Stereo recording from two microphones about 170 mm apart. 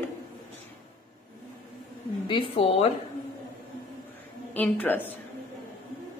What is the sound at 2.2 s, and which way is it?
Speech, 30° left (ahead or behind).